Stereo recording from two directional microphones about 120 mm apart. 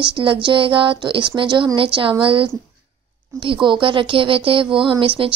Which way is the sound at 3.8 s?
45° right (ahead or behind).